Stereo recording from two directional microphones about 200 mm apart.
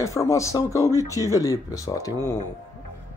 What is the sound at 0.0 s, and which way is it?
Speech, 15° left (ahead or behind).